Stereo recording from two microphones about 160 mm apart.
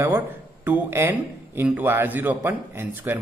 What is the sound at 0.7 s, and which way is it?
A man's voice, 15° right (ahead or behind).